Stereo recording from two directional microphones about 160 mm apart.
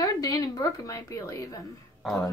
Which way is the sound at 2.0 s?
Centre (ahead or behind).